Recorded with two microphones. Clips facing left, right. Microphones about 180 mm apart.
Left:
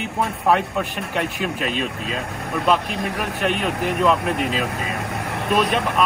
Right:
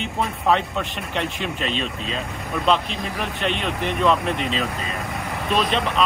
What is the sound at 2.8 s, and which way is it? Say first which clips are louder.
Speech: left 4 dB; 50° left (ahead or behind).